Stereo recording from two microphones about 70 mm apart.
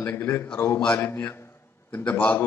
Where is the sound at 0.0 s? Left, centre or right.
Left.